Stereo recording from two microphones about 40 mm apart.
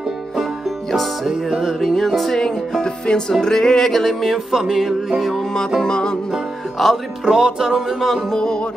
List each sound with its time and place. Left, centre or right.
1.6 s music: centre
2.3 s music: centre
4.5 s music: centre
5.9 s music: left
6.8 s music: centre
7.2 s music: centre
8.0 s music: centre